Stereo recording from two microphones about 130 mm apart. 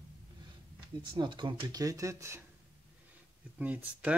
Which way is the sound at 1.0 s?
40° right (ahead or behind).